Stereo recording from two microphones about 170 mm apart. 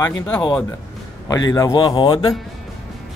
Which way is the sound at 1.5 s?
25° left (ahead or behind).